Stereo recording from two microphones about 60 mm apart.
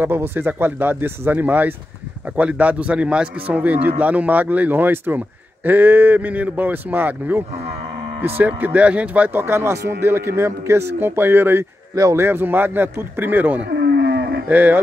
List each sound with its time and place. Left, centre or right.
0.0 s a man's voice: right
9.3 s a man's voice: right
11.9 s speech: right
12.2 s a man's voice: right